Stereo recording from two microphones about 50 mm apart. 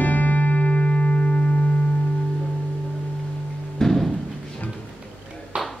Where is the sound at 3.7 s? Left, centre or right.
Centre.